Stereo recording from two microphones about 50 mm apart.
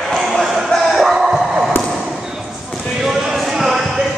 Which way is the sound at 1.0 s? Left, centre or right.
Centre.